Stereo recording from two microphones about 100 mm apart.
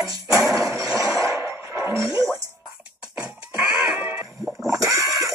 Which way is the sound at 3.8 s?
20° right (ahead or behind).